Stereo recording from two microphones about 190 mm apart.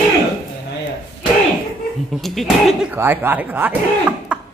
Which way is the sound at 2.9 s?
10° right (ahead or behind).